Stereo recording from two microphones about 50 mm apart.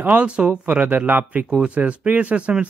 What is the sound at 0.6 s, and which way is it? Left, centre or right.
Speech, right.